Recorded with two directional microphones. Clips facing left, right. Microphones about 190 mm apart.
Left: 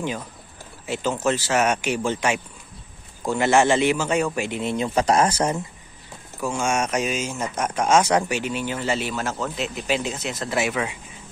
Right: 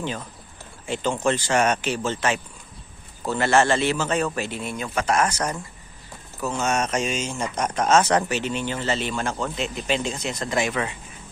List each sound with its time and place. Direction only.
0.8 s speech: 5° left (ahead or behind); by 5.6 s 30° left (ahead or behind)
6.4 s speech: 10° left (ahead or behind)